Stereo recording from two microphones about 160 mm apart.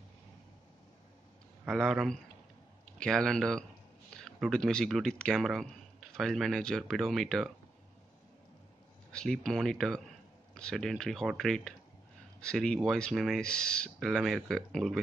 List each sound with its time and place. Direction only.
1.7 s speech: centre (ahead or behind)
9.1 s speech: 5° left (ahead or behind)